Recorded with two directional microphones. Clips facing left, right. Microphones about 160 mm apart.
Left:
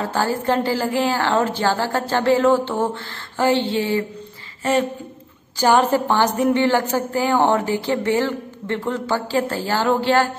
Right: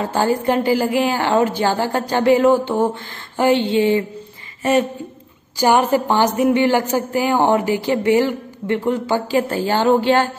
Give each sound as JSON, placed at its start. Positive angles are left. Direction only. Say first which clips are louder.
{"t": 0.0, "sound": "a woman's voice", "louder": "right 3 dB", "side_deg": -20}
{"t": 5.6, "sound": "a woman's voice", "louder": "right 1 dB", "side_deg": -10}